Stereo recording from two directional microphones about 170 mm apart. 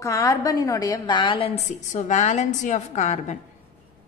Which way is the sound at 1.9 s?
45° left (ahead or behind).